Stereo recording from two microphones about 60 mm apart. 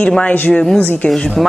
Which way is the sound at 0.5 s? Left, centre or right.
Centre.